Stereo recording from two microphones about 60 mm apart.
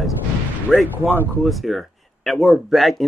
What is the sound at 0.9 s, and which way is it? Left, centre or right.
Speech, right.